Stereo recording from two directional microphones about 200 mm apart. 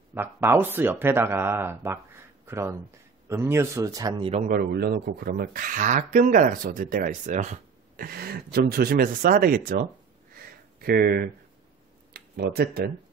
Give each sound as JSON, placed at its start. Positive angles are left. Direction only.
{"t": 0.1, "sound": "speech", "side_deg": -10}
{"t": 4.5, "sound": "speech", "side_deg": -50}
{"t": 10.3, "sound": "a sound", "side_deg": -50}
{"t": 12.1, "sound": "speech", "side_deg": -50}